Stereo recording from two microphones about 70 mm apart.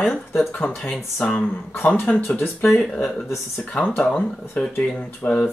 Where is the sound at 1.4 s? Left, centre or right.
Left.